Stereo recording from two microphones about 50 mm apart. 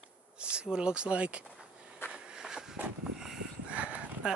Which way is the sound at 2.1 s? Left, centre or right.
Centre.